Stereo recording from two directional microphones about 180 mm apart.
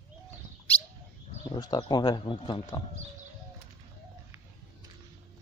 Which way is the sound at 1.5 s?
25° left (ahead or behind).